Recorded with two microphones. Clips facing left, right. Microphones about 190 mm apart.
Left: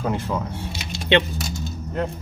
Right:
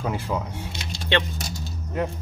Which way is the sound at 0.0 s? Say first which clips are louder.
Left 2 dB; 10° right (ahead or behind).